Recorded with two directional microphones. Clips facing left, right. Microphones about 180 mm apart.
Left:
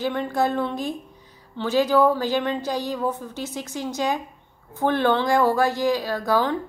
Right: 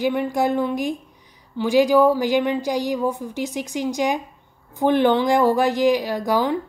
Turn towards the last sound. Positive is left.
turn(degrees=-15)  # may be behind; listen again after turning